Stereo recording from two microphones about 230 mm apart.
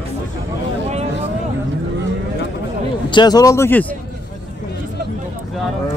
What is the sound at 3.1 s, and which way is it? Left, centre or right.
Speech, centre.